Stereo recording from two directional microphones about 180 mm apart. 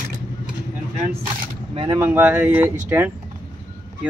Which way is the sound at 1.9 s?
10° right (ahead or behind).